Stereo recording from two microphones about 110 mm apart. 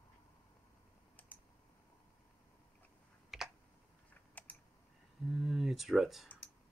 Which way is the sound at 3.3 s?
5° right (ahead or behind).